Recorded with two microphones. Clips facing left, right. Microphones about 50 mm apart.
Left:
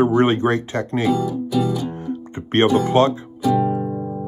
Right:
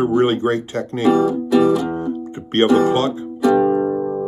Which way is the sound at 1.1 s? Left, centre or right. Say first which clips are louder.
Right 10 dB; right.